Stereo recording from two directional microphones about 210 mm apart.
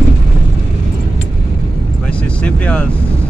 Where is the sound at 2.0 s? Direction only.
5° left (ahead or behind).